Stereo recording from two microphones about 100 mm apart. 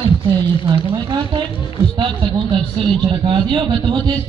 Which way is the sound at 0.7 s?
55° right (ahead or behind).